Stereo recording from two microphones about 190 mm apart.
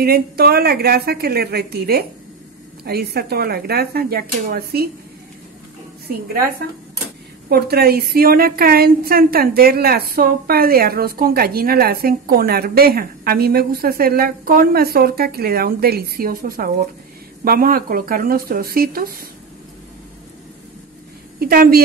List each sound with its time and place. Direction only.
0.0 s a woman's voice: 55° right (ahead or behind)
7.4 s a woman's voice: 55° right (ahead or behind)
21.4 s a woman's voice: 50° right (ahead or behind)